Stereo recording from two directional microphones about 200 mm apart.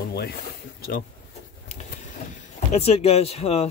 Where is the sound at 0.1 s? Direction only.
50° left (ahead or behind).